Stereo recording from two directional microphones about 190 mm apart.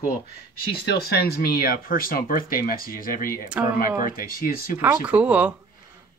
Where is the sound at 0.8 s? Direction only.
55° left (ahead or behind).